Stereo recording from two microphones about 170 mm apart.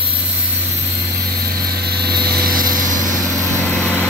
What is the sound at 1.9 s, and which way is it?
Vehicle, 70° right (ahead or behind).